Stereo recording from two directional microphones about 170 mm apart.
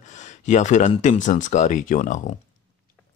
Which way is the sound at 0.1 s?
45° left (ahead or behind).